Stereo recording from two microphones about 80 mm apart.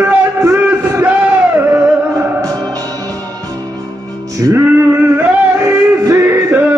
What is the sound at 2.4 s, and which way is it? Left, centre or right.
Music, right.